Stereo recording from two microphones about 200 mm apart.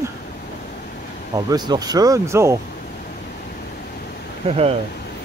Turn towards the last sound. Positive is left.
turn(degrees=-30)  # may be behind; listen again after turning